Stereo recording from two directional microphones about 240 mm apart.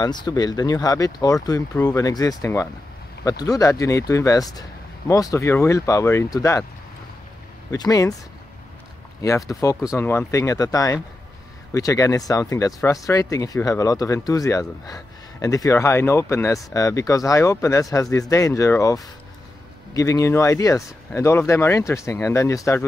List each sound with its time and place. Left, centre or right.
0.0 s speech: centre
7.7 s speech: centre
9.2 s speech: centre